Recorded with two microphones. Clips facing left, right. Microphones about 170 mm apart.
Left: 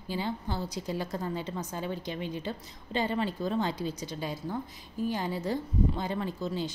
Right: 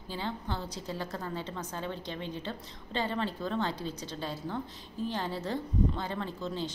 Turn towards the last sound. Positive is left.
turn(degrees=10)  # may be behind; listen again after turning